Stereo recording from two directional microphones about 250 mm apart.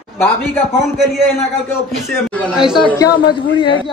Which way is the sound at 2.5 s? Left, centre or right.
Centre.